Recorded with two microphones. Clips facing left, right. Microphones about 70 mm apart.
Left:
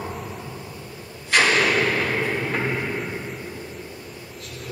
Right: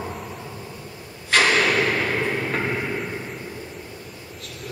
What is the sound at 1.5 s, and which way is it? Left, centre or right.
Hammer, centre.